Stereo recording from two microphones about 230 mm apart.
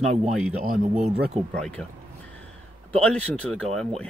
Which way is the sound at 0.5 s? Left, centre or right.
Right.